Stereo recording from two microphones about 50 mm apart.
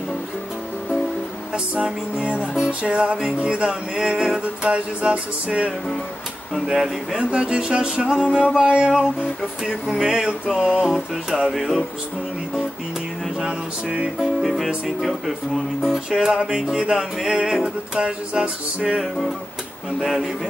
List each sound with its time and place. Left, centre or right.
1.5 s music: right
6.5 s speech: centre
7.2 s music: right
13.5 s music: centre
14.4 s speech: centre
16.1 s music: centre
20.0 s music: centre